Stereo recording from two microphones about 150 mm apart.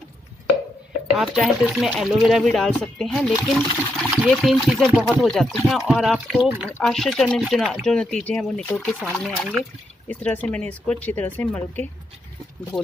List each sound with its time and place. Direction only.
1.1 s speech: centre (ahead or behind)
12.7 s speech: 30° left (ahead or behind)